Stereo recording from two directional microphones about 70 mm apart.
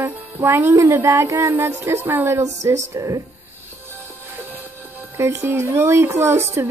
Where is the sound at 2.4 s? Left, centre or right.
Right.